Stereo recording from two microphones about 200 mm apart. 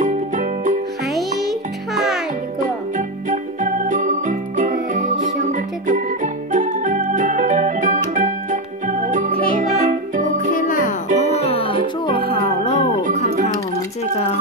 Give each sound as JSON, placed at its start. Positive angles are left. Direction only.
{"t": 0.0, "sound": "music", "side_deg": -40}
{"t": 1.1, "sound": "music", "side_deg": 0}
{"t": 3.3, "sound": "music", "side_deg": -40}
{"t": 10.5, "sound": "music", "side_deg": 40}